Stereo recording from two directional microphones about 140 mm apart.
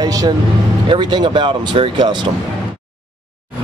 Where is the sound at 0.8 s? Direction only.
35° right (ahead or behind).